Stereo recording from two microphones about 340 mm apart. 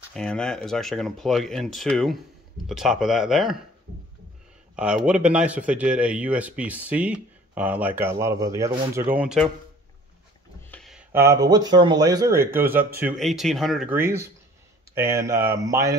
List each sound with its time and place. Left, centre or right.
0.1 s speech: centre
4.7 s speech: centre
10.7 s speech: centre